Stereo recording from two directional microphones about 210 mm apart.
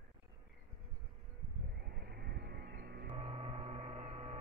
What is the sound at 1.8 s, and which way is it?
Music, 50° right (ahead or behind).